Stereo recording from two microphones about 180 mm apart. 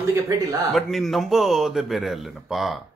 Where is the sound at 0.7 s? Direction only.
Centre (ahead or behind).